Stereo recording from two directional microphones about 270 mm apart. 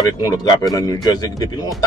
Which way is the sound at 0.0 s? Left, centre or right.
Centre.